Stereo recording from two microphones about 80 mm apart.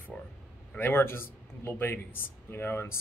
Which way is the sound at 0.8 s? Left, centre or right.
Left.